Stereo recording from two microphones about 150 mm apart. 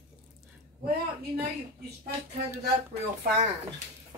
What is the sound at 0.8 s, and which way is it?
Speech, 90° right.